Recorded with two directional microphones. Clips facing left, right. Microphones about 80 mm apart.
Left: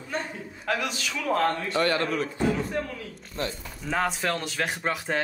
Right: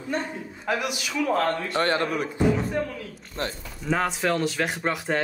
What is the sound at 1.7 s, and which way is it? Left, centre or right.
Speech, right.